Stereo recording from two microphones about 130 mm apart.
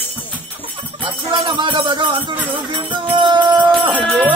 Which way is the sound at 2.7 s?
35° right (ahead or behind).